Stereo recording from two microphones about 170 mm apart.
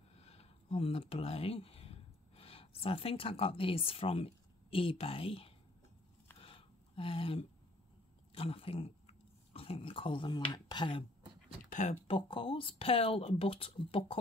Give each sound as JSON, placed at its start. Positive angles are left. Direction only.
{"t": 0.1, "sound": "speech", "side_deg": 35}
{"t": 6.4, "sound": "a sound", "side_deg": 30}
{"t": 8.4, "sound": "speech", "side_deg": 35}
{"t": 11.4, "sound": "speech", "side_deg": 45}